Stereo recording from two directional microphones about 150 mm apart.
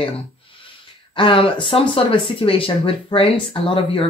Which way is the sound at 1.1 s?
35° left (ahead or behind).